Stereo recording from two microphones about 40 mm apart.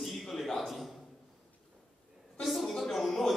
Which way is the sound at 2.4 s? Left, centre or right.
Centre.